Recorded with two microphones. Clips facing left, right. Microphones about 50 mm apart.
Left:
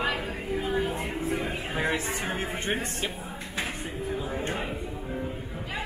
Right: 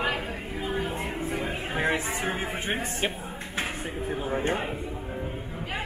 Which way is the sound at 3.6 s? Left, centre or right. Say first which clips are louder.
Right 1 dB; right.